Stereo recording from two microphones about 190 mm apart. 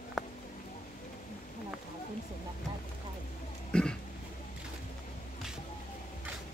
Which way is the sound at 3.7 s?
5° left (ahead or behind).